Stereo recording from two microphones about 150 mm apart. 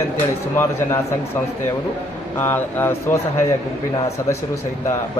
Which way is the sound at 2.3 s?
15° left (ahead or behind).